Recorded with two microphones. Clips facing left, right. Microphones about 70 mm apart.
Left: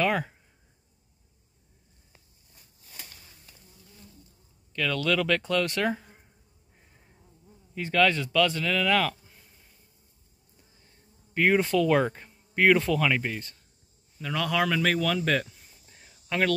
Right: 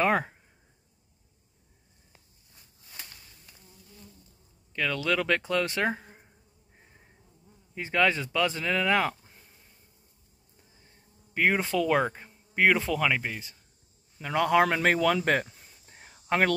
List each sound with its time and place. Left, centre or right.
0.0 s a sound: right
4.7 s speech: centre
7.7 s speech: centre
11.3 s speech: centre
14.2 s speech: right
16.3 s speech: right